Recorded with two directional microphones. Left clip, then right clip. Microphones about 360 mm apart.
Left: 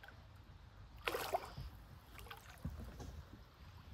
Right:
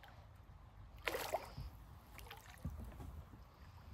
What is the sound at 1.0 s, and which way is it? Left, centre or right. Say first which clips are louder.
Rowboat: left 1 dB; centre.